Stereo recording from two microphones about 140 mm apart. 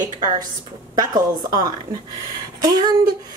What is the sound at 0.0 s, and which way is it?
Speech, 30° right (ahead or behind).